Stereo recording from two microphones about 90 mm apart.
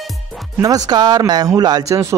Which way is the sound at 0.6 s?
45° right (ahead or behind).